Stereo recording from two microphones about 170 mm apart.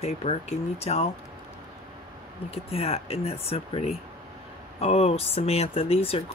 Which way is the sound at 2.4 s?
35° left (ahead or behind).